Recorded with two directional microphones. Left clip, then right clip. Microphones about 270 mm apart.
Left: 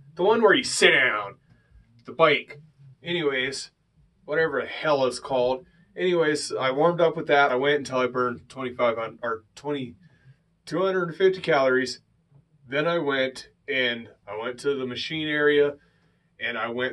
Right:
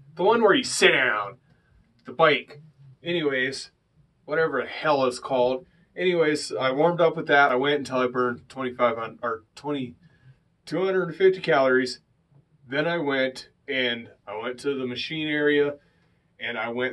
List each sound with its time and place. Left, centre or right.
0.1 s speech: centre